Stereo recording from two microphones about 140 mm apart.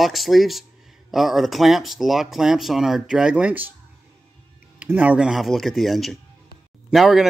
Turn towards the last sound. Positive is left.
turn(degrees=0)  # may be behind; listen again after turning